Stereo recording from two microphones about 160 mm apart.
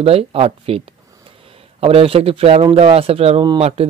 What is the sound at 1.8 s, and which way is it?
Speech, 35° right (ahead or behind).